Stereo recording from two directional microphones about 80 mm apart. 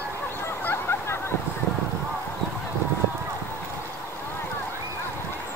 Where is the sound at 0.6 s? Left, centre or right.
Left.